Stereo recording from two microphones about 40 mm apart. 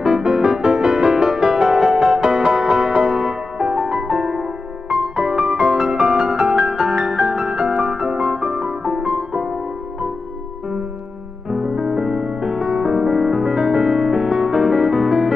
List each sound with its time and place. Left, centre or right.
0.0 s music: centre
11.5 s music: centre